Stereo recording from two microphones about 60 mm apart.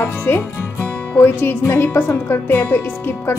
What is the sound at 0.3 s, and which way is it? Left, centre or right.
Speech, left.